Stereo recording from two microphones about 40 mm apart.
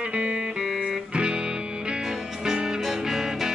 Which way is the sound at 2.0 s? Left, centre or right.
Centre.